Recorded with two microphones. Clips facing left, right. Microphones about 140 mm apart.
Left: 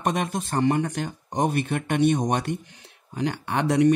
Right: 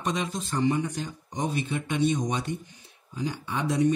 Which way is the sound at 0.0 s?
60° left (ahead or behind).